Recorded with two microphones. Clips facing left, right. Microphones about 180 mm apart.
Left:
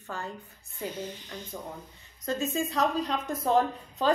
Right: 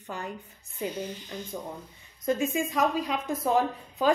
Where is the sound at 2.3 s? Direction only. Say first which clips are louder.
Right 3 dB; 15° right (ahead or behind).